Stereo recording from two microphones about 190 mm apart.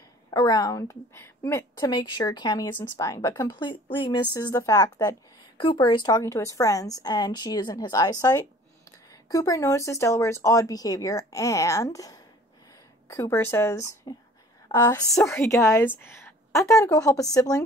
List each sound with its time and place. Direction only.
0.3 s a woman's voice: 20° left (ahead or behind)